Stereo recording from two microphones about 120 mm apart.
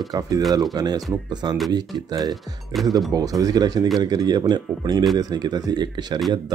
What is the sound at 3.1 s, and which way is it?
Speech, 30° right (ahead or behind).